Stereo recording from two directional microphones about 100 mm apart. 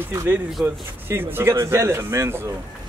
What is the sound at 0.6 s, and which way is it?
Speech, 20° right (ahead or behind).